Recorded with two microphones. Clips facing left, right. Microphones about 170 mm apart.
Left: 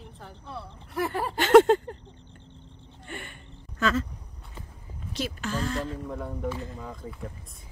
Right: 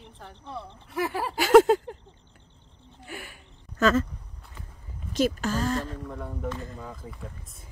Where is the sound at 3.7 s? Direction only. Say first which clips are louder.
Right 4 dB; 45° right (ahead or behind).